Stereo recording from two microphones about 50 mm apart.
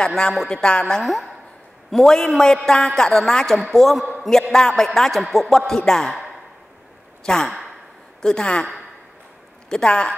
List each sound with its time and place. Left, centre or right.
0.0 s a man's voice: centre
1.0 s a woman's voice: centre
7.2 s a man's voice: centre
9.7 s a man's voice: centre